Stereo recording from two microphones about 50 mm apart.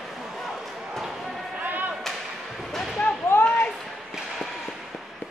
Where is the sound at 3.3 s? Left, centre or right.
Left.